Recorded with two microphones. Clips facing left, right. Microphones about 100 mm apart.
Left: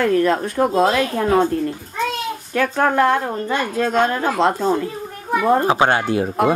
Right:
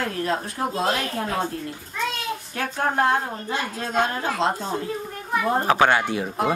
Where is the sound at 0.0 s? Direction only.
55° left (ahead or behind).